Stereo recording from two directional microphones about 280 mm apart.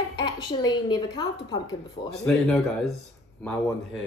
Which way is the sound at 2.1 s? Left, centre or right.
Centre.